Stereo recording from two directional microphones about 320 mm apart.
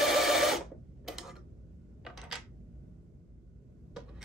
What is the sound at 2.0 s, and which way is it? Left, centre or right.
Coin, centre.